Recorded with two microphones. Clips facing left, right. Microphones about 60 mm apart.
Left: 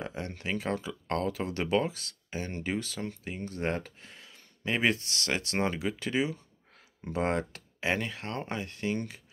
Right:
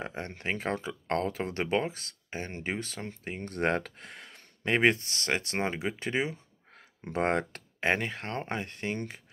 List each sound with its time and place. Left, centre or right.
0.0 s speech: right
3.3 s speech: right
4.8 s speech: right